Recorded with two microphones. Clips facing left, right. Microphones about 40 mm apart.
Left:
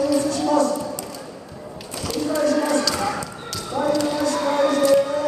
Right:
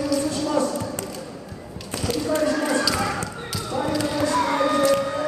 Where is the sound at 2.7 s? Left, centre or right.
Centre.